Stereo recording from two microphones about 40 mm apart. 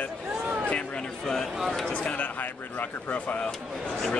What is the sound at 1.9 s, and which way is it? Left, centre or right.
Speech, left.